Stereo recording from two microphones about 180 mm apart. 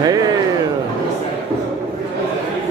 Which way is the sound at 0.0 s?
20° right (ahead or behind).